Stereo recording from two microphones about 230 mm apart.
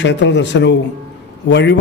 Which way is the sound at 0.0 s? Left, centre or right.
Left.